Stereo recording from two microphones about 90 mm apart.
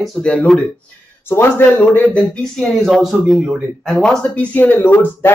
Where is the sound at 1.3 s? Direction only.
25° left (ahead or behind).